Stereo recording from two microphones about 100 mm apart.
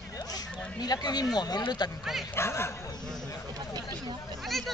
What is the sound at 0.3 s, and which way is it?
Speech, 40° left (ahead or behind).